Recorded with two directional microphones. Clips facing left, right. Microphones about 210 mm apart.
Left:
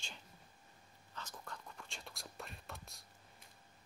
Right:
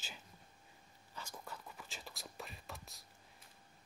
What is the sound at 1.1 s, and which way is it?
Speech, 10° right (ahead or behind).